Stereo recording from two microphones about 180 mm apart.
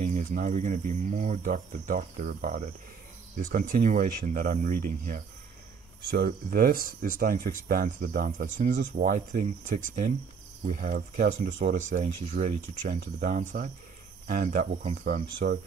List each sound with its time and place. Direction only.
0.0 s speech: 45° right (ahead or behind)
6.0 s speech: 60° right (ahead or behind)